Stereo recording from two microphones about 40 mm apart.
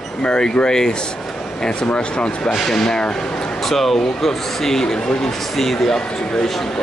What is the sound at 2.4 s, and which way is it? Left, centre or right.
Speech, centre.